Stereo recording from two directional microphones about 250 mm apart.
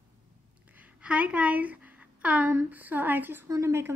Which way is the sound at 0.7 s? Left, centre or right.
Centre.